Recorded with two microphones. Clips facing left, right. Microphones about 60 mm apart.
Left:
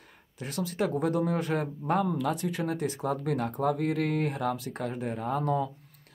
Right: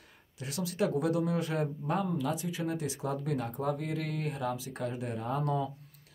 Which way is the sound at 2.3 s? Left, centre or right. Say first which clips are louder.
Left 3 dB; left.